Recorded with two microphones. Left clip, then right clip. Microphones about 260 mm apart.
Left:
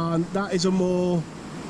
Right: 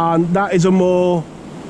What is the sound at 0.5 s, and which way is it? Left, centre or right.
Speech, centre.